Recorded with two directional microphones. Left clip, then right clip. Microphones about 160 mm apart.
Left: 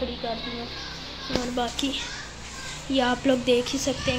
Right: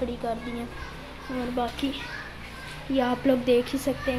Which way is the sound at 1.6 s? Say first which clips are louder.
Left 2 dB; 5° right (ahead or behind).